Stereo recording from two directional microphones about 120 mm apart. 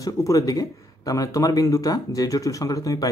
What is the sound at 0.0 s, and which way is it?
Speech, 30° left (ahead or behind).